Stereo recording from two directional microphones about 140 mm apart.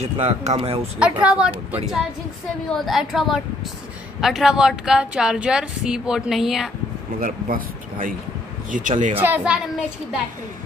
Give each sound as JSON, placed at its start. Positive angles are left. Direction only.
{"t": 0.0, "sound": "speech", "side_deg": -50}
{"t": 0.9, "sound": "a woman's voice", "side_deg": -10}
{"t": 7.2, "sound": "speech", "side_deg": -90}
{"t": 8.7, "sound": "speech", "side_deg": -65}
{"t": 9.2, "sound": "speech", "side_deg": -10}